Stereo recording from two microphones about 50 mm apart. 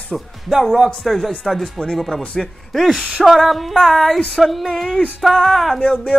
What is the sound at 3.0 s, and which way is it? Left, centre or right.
Speech, centre.